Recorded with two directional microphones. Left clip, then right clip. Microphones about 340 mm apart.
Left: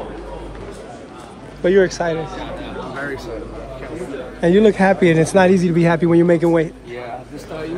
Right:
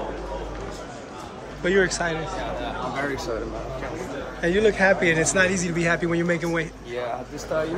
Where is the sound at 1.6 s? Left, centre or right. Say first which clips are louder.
Left 6 dB; centre.